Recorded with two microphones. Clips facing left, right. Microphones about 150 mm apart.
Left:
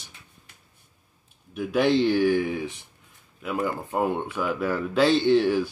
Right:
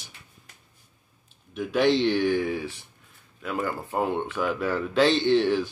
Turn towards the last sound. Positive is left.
turn(degrees=10)  # may be behind; listen again after turning